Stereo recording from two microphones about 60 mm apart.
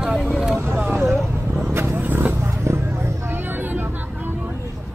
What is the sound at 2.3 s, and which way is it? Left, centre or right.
Vehicle, right.